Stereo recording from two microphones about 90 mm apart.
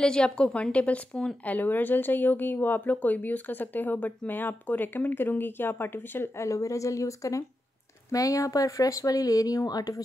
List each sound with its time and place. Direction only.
0.0 s a woman's voice: 10° left (ahead or behind); by 10.0 s 45° left (ahead or behind)